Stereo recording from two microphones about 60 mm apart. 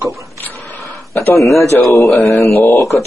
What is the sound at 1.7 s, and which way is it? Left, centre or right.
Speech, left.